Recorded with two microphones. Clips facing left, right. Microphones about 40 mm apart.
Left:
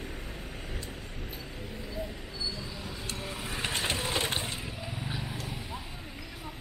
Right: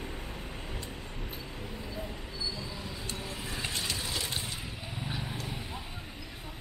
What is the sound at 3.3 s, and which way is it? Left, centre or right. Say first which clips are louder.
Vehicle: left 2 dB; left.